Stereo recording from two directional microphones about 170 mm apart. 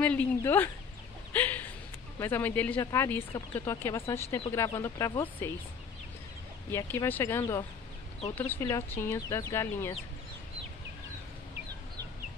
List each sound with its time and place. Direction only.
0.0 s speech: 10° left (ahead or behind)
1.3 s a sound: 10° left (ahead or behind)
2.1 s speech: 15° left (ahead or behind)
6.7 s speech: 15° left (ahead or behind)